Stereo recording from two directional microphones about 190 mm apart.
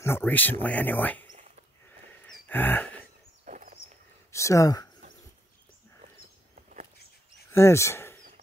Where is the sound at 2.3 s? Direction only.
10° left (ahead or behind).